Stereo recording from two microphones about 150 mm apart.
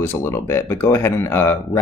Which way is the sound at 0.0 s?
15° left (ahead or behind).